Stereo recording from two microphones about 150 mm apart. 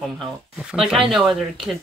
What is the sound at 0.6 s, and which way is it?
Speech, 5° right (ahead or behind).